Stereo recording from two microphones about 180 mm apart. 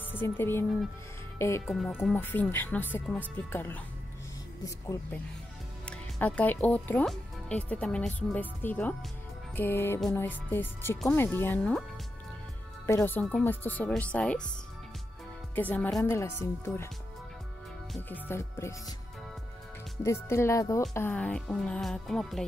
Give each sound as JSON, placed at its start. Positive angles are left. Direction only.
{"t": 0.1, "sound": "speech", "side_deg": 10}
{"t": 5.9, "sound": "speech", "side_deg": 5}
{"t": 12.8, "sound": "speech", "side_deg": 10}
{"t": 15.5, "sound": "speech", "side_deg": 10}
{"t": 17.9, "sound": "speech", "side_deg": 10}
{"t": 20.0, "sound": "speech", "side_deg": 15}